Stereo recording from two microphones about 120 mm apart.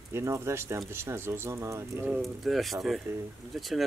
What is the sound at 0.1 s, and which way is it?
Speech, 20° right (ahead or behind).